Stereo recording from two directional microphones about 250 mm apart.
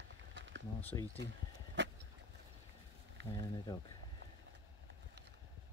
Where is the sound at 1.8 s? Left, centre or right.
Right.